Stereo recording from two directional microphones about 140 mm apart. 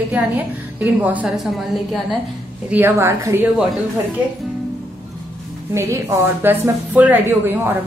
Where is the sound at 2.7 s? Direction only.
15° right (ahead or behind).